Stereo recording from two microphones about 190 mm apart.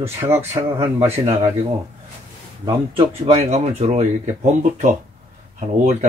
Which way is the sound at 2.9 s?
30° right (ahead or behind).